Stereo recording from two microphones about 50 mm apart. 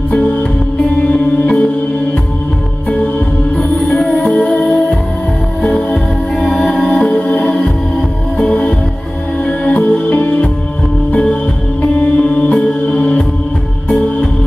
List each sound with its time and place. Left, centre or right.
1.1 s music: left
4.1 s music: left
9.5 s music: left